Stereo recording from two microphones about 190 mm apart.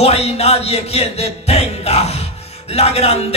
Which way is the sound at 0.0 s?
35° left (ahead or behind).